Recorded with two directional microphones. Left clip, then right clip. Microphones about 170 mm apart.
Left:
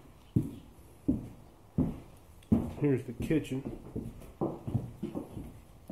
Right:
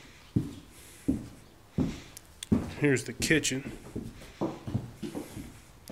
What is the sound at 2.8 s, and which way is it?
Speech, 5° right (ahead or behind).